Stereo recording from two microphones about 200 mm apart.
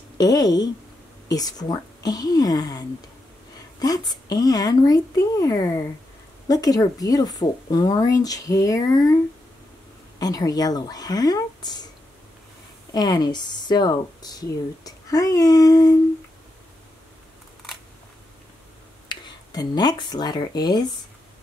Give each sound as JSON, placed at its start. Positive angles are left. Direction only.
{"t": 0.2, "sound": "speech", "side_deg": 20}
{"t": 3.8, "sound": "speech", "side_deg": 20}
{"t": 12.9, "sound": "speech", "side_deg": 20}
{"t": 19.0, "sound": "speech", "side_deg": 20}